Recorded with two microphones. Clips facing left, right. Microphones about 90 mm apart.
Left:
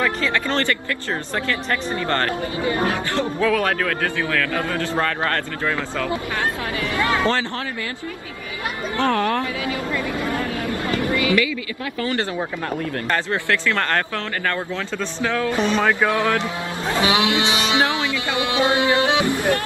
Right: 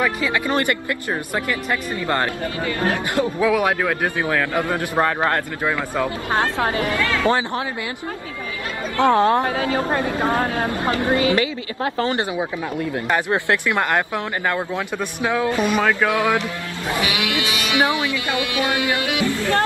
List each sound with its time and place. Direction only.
0.0 s speech: 15° right (ahead or behind)
2.6 s speech: 25° left (ahead or behind)
3.2 s a man's voice: 15° right (ahead or behind)
6.7 s speech: 35° right (ahead or behind)
7.0 s speech: 20° left (ahead or behind)
7.2 s speech: 15° right (ahead or behind)
8.9 s a man's voice: 20° right (ahead or behind)
9.6 s speech: 35° right (ahead or behind)
9.8 s speech: 55° right (ahead or behind)
10.1 s speech: 40° right (ahead or behind)
10.7 s a man's voice: 25° right (ahead or behind)
12.9 s speech: 15° right (ahead or behind)
16.8 s speech: 30° left (ahead or behind)